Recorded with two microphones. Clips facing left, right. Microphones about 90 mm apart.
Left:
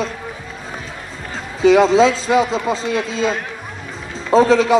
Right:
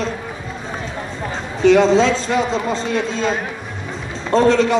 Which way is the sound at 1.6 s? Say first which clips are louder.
Left 1 dB; 5° left (ahead or behind).